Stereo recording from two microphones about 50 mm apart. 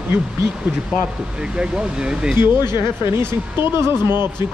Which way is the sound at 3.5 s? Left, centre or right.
Right.